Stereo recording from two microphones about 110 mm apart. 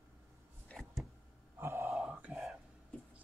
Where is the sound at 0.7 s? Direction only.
15° left (ahead or behind).